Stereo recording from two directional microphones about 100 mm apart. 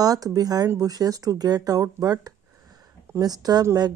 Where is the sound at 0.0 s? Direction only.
40° right (ahead or behind).